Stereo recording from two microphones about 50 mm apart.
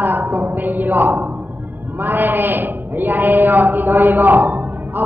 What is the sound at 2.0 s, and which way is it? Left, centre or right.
A man's voice, right.